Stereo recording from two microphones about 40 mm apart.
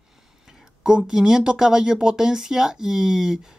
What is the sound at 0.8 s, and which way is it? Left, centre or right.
Speech, centre.